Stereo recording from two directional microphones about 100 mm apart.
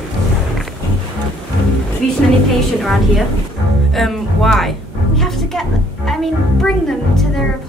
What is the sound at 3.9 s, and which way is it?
Music, centre (ahead or behind).